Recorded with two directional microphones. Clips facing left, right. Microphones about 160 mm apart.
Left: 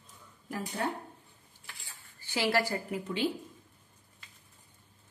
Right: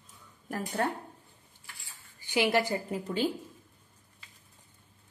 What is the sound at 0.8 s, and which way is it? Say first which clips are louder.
Speech: right 3 dB; 55° right (ahead or behind).